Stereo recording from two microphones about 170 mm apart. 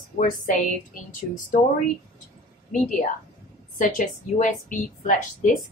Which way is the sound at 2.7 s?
50° left (ahead or behind).